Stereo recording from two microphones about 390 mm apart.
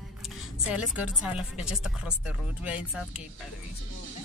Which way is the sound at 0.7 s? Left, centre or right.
Centre.